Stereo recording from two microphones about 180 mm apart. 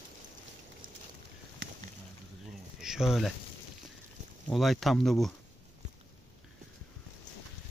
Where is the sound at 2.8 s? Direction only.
Centre (ahead or behind).